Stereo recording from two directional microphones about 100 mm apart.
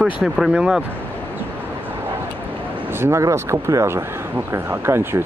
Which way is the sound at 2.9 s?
25° right (ahead or behind).